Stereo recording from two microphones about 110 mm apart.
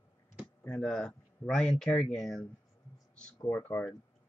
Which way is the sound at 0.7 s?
10° left (ahead or behind).